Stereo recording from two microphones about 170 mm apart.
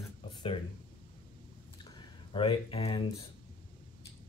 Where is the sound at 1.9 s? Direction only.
30° left (ahead or behind).